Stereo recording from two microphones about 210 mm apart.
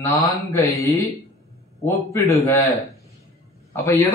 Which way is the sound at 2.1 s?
15° left (ahead or behind).